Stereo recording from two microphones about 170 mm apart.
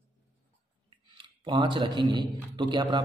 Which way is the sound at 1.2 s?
30° right (ahead or behind).